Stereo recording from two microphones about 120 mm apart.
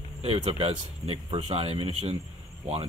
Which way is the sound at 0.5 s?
55° right (ahead or behind).